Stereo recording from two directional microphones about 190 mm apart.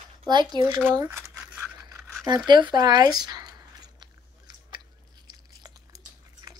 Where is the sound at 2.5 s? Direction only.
25° right (ahead or behind).